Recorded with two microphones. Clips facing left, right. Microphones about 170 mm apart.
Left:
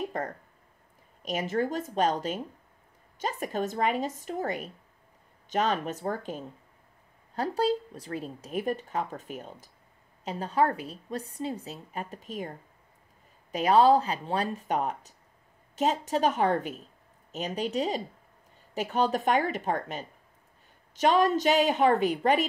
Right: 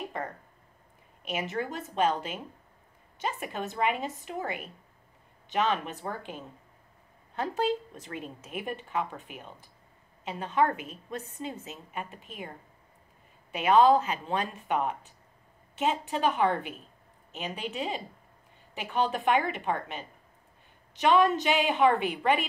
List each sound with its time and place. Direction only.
0.2 s speech: 40° left (ahead or behind)
13.5 s speech: 35° left (ahead or behind)